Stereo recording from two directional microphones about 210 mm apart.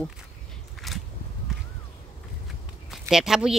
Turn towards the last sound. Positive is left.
turn(degrees=0)  # may be behind; listen again after turning